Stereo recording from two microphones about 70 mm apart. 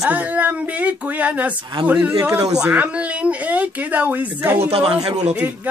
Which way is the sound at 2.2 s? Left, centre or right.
Right.